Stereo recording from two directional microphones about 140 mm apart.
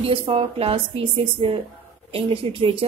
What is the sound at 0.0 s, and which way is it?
A woman's voice, 40° right (ahead or behind).